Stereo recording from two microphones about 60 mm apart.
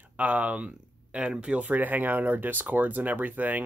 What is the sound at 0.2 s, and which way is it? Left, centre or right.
Speech, right.